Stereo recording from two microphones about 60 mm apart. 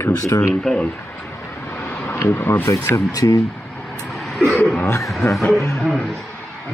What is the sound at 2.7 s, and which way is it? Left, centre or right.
Speech, left.